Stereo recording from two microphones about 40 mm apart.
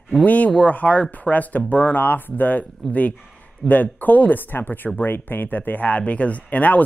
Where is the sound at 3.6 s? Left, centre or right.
Left.